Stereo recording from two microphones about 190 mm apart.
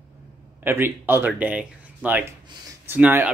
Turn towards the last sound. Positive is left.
turn(degrees=-10)  # may be behind; listen again after turning